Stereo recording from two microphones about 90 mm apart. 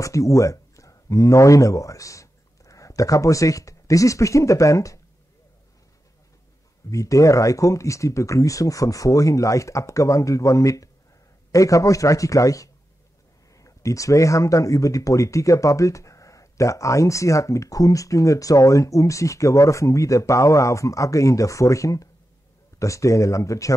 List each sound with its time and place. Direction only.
0.0 s speech: 35° left (ahead or behind)
6.9 s speech: 35° left (ahead or behind)